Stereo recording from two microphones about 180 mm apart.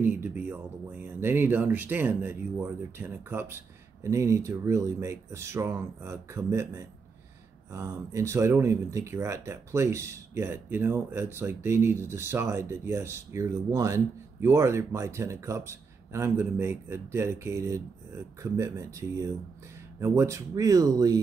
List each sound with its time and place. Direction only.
0.0 s speech: 10° right (ahead or behind)